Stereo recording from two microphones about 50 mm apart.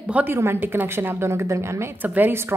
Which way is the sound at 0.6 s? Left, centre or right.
Right.